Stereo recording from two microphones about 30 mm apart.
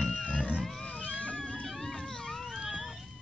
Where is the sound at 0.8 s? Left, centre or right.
Left.